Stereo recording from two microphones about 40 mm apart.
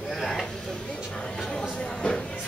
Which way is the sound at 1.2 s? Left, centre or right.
Centre.